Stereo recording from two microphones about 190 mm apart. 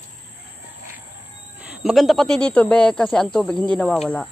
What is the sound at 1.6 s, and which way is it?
Speech, centre (ahead or behind).